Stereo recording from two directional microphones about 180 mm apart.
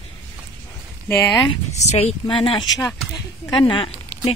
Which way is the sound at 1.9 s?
35° left (ahead or behind).